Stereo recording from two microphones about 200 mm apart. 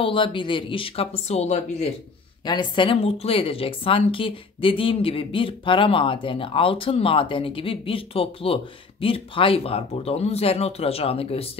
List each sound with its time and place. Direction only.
0.0 s speech: 25° left (ahead or behind)
2.4 s speech: 20° left (ahead or behind)